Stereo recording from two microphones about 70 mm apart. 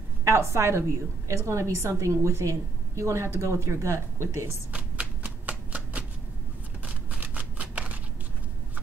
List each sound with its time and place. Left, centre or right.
0.2 s a woman's voice: right
4.7 s a sound: right
6.8 s shuffling cards: right